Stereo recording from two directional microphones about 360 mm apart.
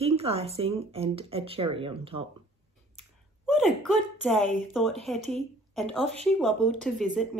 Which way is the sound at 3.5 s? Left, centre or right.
Centre.